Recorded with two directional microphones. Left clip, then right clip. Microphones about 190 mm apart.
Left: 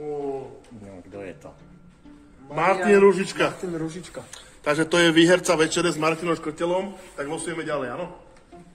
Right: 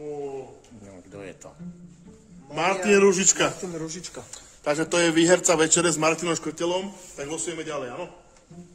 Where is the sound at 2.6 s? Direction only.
85° right; by 3.9 s 60° right (ahead or behind).